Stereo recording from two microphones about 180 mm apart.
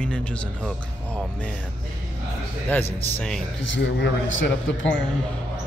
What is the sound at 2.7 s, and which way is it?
Speech, 10° left (ahead or behind).